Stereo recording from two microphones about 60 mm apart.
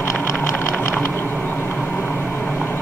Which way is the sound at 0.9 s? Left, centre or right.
Left.